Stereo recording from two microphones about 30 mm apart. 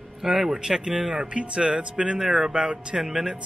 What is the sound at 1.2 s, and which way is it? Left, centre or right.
Speech, right.